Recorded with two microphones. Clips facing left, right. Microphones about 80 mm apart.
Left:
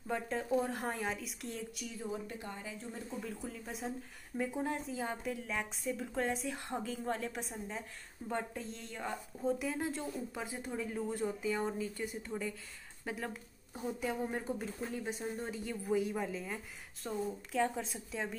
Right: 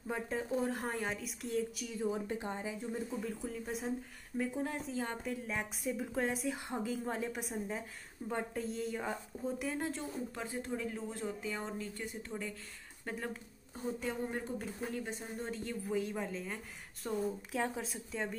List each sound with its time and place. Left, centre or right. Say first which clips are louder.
0.1 s a woman's voice: left 2 dB; centre
2.2 s speech: right 5 dB; right
3.2 s a woman's voice: right 3 dB; centre
8.5 s a woman's voice: right 6 dB; centre